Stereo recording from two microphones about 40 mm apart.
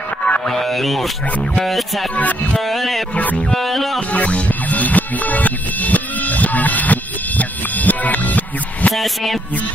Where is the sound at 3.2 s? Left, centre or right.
Left.